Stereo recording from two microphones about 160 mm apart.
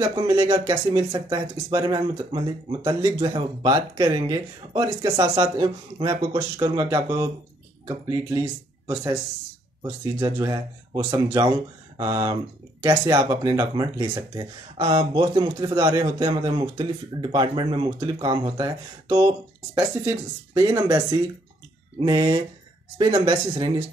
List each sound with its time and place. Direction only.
0.0 s speech: 25° right (ahead or behind)
12.0 s speech: 25° right (ahead or behind)